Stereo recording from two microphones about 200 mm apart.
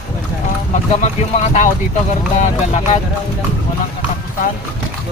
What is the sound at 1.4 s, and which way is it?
Speech, 35° left (ahead or behind).